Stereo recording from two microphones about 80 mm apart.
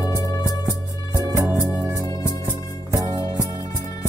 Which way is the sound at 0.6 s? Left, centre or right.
Right.